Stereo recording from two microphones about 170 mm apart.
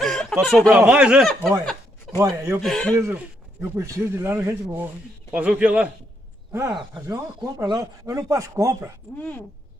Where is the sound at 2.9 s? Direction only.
15° right (ahead or behind).